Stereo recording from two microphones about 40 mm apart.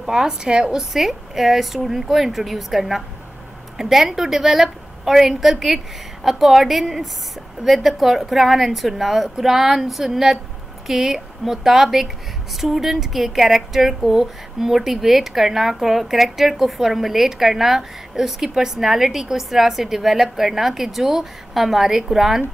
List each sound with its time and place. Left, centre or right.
0.0 s a woman's voice: centre
0.9 s a woman's voice: centre